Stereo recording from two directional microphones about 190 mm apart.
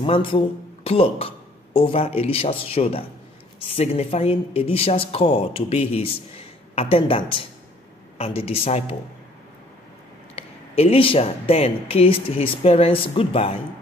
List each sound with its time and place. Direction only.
0.0 s speech: 30° left (ahead or behind)
10.3 s speech: 30° left (ahead or behind)